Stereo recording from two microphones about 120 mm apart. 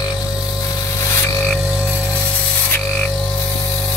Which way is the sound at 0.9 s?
25° left (ahead or behind).